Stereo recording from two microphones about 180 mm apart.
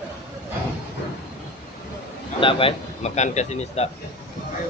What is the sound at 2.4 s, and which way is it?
A man's voice, 35° left (ahead or behind).